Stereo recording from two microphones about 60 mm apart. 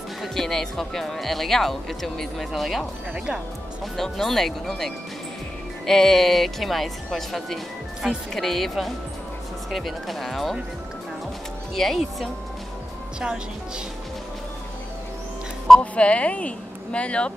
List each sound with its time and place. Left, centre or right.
0.2 s speech: centre
11.7 s speech: centre
15.8 s speech: left